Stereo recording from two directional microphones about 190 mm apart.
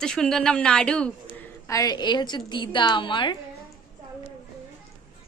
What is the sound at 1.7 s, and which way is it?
A woman's voice, 20° left (ahead or behind).